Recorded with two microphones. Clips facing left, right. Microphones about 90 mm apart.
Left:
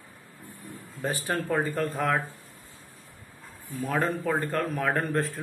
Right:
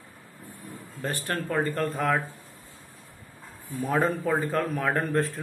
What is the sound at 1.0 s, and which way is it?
Speech, 10° left (ahead or behind).